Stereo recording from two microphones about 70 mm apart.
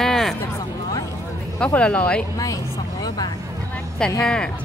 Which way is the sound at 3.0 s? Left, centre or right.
Left.